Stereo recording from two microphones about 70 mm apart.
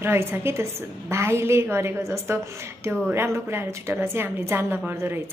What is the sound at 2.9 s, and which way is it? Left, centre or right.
A woman's voice, right.